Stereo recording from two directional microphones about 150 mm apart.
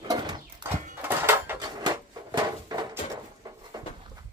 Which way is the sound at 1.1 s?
15° right (ahead or behind).